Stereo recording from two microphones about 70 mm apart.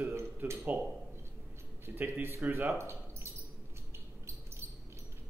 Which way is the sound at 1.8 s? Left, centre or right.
Right.